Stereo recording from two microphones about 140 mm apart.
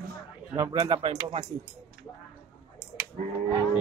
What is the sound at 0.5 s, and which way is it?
Speech, 25° right (ahead or behind).